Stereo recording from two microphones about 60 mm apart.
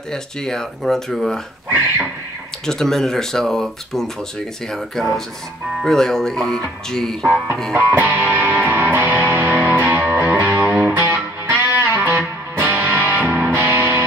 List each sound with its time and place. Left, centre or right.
0.1 s speech: centre
2.6 s speech: centre
7.7 s music: right